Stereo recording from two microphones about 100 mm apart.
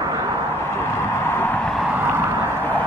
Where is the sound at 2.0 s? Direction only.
25° right (ahead or behind).